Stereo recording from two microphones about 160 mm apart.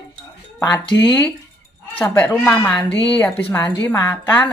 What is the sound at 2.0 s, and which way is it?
Speech, 10° left (ahead or behind).